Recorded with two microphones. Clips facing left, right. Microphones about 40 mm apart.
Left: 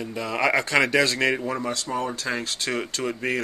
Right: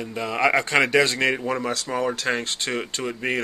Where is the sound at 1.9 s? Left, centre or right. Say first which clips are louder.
Right 3 dB; right.